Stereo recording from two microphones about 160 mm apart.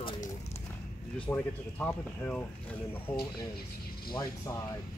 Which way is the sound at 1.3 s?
10° left (ahead or behind).